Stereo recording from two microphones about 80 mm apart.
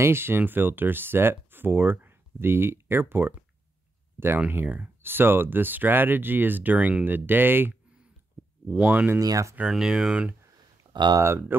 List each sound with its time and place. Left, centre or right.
0.0 s speech: right
9.2 s speech: right
9.6 s speech: centre
10.9 s a sound: right
11.1 s speech: right